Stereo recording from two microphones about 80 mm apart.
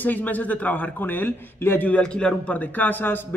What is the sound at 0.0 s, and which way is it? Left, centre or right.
Speech, left.